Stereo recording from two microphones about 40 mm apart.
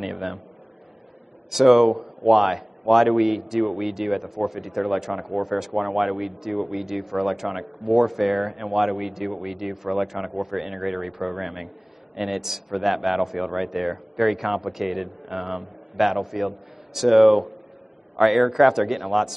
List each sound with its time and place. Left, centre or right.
1.5 s speech: centre